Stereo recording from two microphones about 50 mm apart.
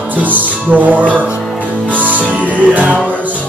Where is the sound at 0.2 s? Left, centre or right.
Right.